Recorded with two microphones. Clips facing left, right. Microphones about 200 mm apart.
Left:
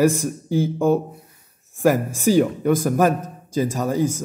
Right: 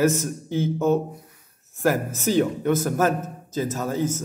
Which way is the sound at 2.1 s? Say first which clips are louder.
Left 4 dB; 10° left (ahead or behind).